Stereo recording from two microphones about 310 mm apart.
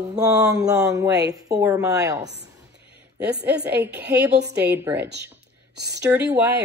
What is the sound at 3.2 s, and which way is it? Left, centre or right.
Speech, right.